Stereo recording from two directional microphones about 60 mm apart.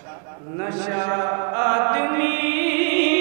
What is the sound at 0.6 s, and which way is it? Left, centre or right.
Mantra, right.